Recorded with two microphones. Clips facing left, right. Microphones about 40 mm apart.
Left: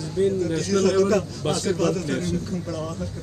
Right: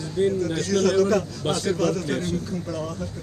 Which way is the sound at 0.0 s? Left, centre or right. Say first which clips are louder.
Even; right.